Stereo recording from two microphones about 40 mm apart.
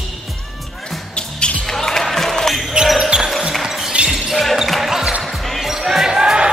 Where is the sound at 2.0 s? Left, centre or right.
Centre.